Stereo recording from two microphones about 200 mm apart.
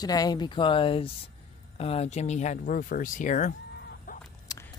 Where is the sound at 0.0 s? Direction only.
20° left (ahead or behind); by 3.5 s 40° left (ahead or behind).